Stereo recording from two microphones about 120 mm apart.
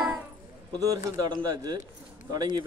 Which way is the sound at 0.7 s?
35° right (ahead or behind).